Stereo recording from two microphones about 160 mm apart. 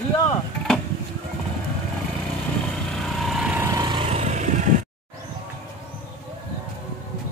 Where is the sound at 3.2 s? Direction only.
5° right (ahead or behind).